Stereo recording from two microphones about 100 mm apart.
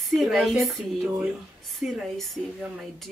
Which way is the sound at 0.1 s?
Centre (ahead or behind).